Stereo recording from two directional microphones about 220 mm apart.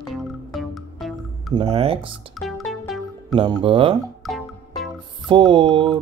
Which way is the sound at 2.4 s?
Centre (ahead or behind).